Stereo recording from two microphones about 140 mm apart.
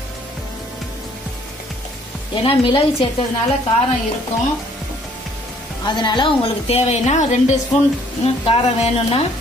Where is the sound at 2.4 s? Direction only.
40° left (ahead or behind).